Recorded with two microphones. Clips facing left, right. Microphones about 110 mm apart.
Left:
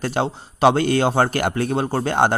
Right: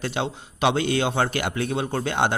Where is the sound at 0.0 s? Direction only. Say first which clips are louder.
Left 5 dB; 40° left (ahead or behind).